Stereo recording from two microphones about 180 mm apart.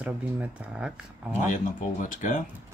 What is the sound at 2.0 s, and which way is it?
Speech, 45° left (ahead or behind).